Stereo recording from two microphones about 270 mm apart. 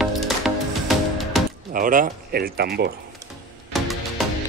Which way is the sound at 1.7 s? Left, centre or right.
Right.